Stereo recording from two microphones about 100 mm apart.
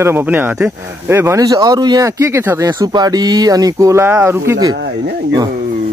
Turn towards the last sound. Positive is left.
turn(degrees=-25)  # may be behind; listen again after turning